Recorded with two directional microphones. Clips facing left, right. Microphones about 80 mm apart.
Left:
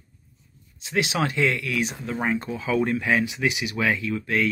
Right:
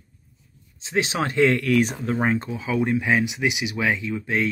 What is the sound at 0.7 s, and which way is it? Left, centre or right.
Speech, right.